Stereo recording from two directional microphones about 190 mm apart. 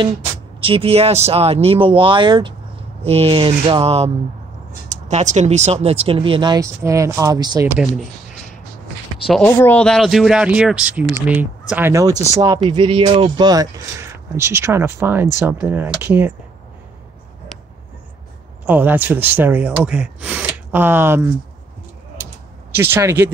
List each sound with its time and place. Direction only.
0.6 s speech: 30° right (ahead or behind)
9.2 s speech: 5° left (ahead or behind)
18.7 s speech: 10° right (ahead or behind)
22.8 s speech: 10° right (ahead or behind)